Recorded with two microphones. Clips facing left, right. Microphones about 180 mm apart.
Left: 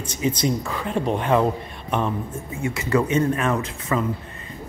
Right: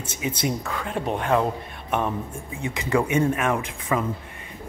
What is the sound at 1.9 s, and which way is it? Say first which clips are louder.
Speech: left 1 dB; 10° right (ahead or behind).